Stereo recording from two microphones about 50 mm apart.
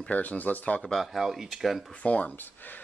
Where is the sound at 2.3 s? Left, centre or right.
Left.